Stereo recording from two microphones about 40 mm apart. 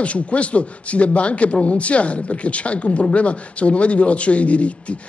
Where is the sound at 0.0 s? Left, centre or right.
Left.